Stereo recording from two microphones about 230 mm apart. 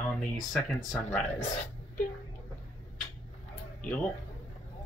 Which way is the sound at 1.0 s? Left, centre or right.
Left.